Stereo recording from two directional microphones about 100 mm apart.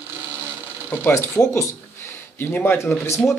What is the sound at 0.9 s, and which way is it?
Speech, 20° left (ahead or behind).